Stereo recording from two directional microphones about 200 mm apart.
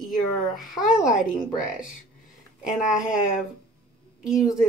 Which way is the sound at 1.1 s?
40° left (ahead or behind).